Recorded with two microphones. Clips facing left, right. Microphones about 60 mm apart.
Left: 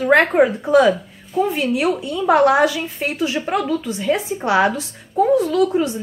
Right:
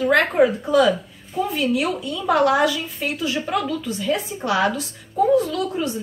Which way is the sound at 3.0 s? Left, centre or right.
Left.